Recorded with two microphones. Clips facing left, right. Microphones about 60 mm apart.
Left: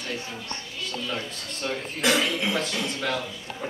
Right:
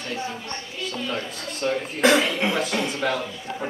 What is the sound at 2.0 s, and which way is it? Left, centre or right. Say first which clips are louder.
Speech: right 5 dB; right.